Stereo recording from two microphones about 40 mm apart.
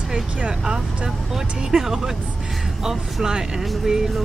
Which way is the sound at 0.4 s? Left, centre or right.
Right.